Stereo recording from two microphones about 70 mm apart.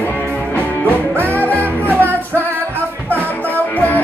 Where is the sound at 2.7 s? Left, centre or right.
Left.